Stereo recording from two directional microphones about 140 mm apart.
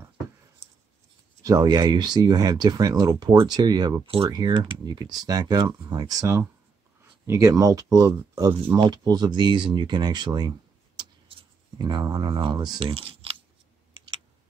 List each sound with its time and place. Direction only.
1.4 s speech: 25° right (ahead or behind)
4.8 s speech: 30° right (ahead or behind)
11.0 s a sound: 30° right (ahead or behind)